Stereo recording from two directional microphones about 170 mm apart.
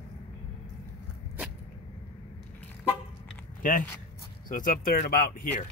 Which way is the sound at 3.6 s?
55° left (ahead or behind).